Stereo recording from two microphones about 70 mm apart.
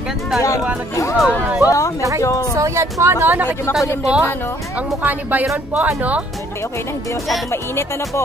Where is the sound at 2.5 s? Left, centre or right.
Right.